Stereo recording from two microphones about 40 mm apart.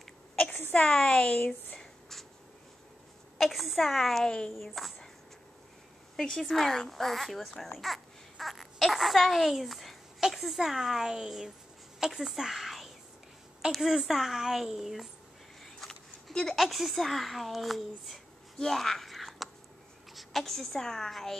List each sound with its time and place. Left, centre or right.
0.7 s speech: left
1.8 s writing: centre
3.3 s a child's voice: centre
4.1 s a woman's voice: centre
6.1 s a child's voice: centre
15.6 s a sound: centre
16.5 s a child's voice: centre